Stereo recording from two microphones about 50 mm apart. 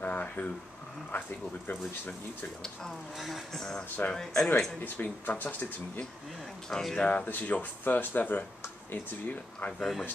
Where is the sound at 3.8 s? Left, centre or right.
Left.